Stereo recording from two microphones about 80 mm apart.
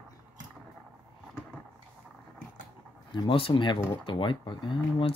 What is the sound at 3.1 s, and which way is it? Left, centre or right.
Speech, left.